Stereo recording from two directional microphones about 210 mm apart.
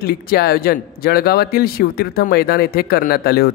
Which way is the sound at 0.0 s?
45° left (ahead or behind).